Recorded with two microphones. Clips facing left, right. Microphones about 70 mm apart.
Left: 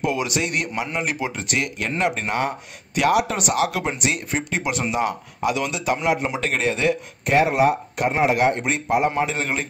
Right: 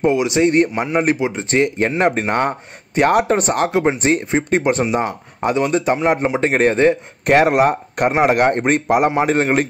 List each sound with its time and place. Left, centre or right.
0.1 s speech: right
7.2 s speech: right